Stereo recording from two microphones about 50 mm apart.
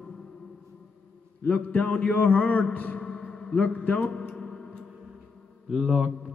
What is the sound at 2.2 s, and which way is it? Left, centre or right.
Mantra, left.